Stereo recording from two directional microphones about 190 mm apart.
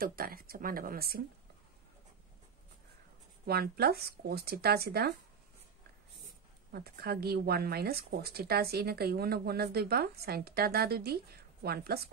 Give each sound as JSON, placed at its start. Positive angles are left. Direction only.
{"t": 0.0, "sound": "speech", "side_deg": -50}
{"t": 3.4, "sound": "speech", "side_deg": -55}
{"t": 6.7, "sound": "speech", "side_deg": -55}